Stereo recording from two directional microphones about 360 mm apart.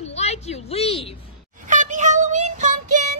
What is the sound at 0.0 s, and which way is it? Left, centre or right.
A woman's voice, centre.